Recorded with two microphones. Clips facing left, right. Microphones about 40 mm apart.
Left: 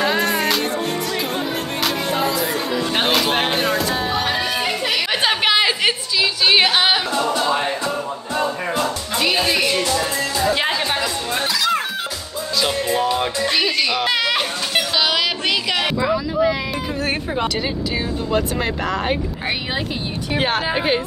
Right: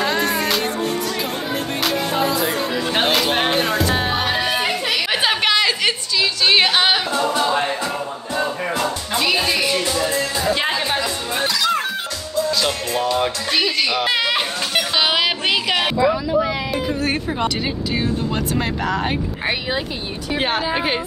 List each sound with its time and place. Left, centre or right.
0.0 s music: centre
1.9 s music: centre
4.1 s music: centre
4.8 s chatter: centre
5.5 s a sound: centre
7.2 s music: right
11.3 s music: centre
15.0 s a sound: centre
16.0 s a sound: centre
18.3 s speech: centre
20.3 s speech: centre